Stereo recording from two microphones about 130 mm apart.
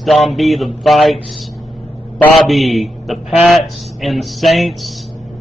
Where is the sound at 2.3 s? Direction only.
Centre (ahead or behind).